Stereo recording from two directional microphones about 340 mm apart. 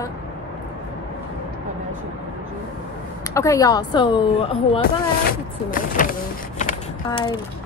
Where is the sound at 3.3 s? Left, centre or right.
Centre.